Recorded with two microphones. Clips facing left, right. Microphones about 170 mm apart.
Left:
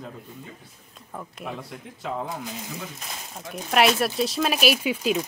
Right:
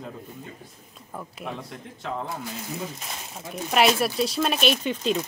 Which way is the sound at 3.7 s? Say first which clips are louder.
Even; centre (ahead or behind).